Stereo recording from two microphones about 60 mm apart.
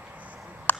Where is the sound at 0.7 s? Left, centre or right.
Left.